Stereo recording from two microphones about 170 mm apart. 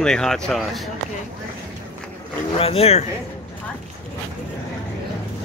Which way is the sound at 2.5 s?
35° left (ahead or behind).